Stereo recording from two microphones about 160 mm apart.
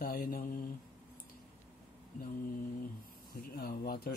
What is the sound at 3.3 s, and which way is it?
Speech, 70° left (ahead or behind).